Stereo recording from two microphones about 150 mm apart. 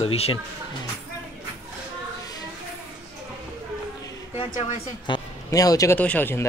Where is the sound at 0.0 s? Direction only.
40° left (ahead or behind).